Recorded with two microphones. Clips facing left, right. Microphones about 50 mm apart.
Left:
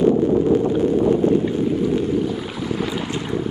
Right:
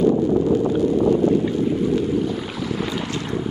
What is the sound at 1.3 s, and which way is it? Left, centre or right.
Boat, centre.